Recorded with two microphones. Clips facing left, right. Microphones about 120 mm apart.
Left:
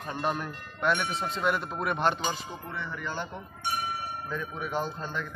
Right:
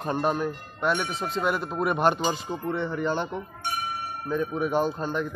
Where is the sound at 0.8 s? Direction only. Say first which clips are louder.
Right 2 dB; 10° right (ahead or behind).